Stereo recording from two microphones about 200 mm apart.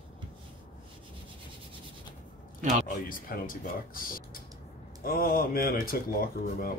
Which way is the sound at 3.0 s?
45° left (ahead or behind).